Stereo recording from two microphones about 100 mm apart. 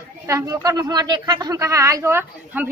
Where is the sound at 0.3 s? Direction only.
35° right (ahead or behind).